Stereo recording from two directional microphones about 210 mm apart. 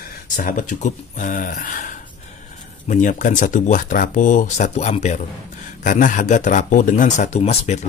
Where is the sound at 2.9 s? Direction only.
35° left (ahead or behind).